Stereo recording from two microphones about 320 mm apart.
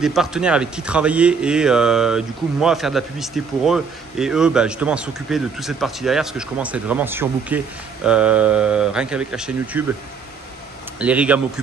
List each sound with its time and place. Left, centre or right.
0.0 s speech: centre
11.0 s speech: centre